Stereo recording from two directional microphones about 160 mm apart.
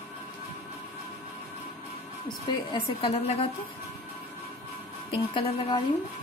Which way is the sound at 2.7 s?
35° left (ahead or behind).